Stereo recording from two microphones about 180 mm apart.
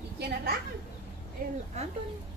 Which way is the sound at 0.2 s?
60° right (ahead or behind).